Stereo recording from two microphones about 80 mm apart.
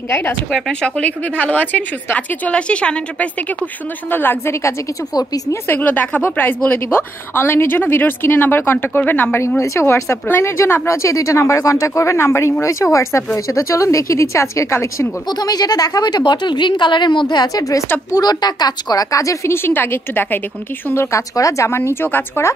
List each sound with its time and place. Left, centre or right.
0.1 s a woman's voice: left
0.5 s a woman's voice: centre; by 4.6 s left
5.8 s a woman's voice: left
9.6 s speech: left
15.2 s a woman's voice: left